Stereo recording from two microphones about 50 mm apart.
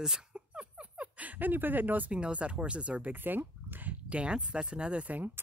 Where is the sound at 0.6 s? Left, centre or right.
Right.